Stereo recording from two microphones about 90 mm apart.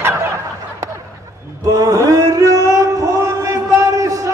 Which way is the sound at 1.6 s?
35° right (ahead or behind).